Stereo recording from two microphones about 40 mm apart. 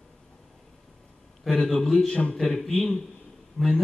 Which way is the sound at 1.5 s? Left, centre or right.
Centre.